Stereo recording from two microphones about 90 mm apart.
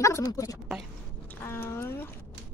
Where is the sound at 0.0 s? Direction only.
35° left (ahead or behind).